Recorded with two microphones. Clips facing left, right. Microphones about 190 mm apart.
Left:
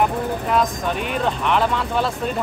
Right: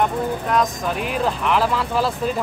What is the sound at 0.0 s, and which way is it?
Speech, centre (ahead or behind).